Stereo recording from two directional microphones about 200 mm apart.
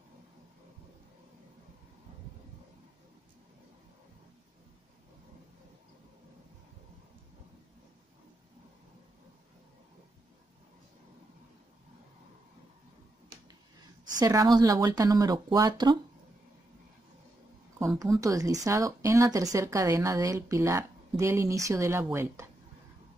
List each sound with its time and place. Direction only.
14.2 s speech: 15° right (ahead or behind)
18.2 s speech: 15° right (ahead or behind)